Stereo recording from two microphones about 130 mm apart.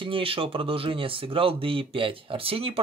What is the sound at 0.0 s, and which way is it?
Speech, 45° right (ahead or behind).